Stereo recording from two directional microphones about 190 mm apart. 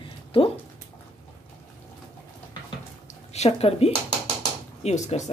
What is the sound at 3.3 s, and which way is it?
Speech, 35° left (ahead or behind).